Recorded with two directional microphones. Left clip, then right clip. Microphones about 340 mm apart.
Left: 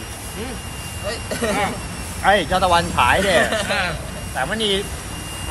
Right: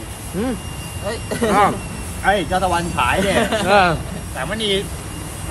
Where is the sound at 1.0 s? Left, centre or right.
Centre.